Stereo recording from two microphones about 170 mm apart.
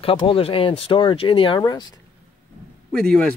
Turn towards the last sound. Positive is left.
turn(degrees=5)  # may be behind; listen again after turning